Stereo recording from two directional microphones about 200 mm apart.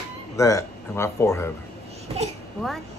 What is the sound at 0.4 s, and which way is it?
Speech, 15° left (ahead or behind).